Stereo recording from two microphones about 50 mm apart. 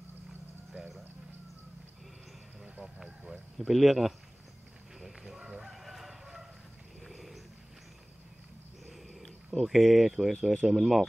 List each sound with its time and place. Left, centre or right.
0.7 s a sound: right
2.8 s vehicle: centre
3.5 s speech: centre
5.0 s chicken: centre
7.0 s wild animals: centre
8.8 s a sound: centre
10.6 s speech: centre